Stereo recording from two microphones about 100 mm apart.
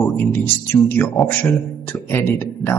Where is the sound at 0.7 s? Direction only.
25° left (ahead or behind).